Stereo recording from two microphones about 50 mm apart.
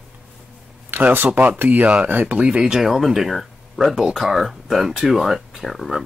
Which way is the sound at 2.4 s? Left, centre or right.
Centre.